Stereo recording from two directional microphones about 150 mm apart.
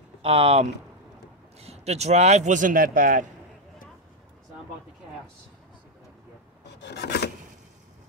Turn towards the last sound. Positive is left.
turn(degrees=90)